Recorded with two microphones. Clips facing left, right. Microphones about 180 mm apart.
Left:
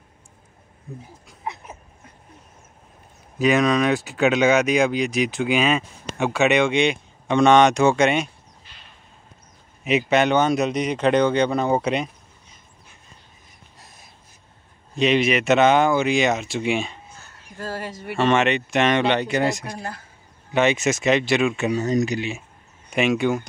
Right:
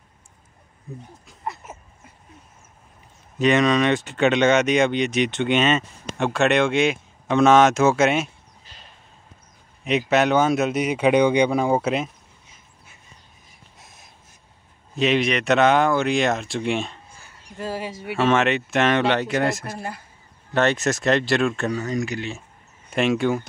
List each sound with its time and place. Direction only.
1.0 s a sound: centre (ahead or behind)
3.3 s speech: centre (ahead or behind)
9.8 s speech: centre (ahead or behind)
13.7 s a sound: centre (ahead or behind)
15.0 s speech: centre (ahead or behind)
21.7 s speech: 20° left (ahead or behind)
22.8 s speech: centre (ahead or behind)